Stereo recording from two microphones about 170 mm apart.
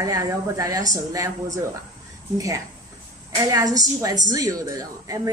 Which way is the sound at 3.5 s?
20° right (ahead or behind).